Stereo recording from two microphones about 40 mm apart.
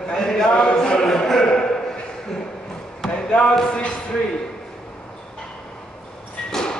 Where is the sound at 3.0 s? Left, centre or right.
Left.